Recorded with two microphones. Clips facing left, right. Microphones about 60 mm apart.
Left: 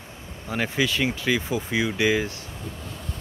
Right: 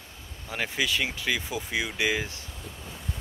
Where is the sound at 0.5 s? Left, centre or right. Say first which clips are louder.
Left 4 dB; centre.